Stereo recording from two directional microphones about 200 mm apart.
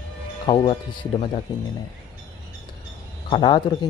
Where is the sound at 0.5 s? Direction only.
25° left (ahead or behind).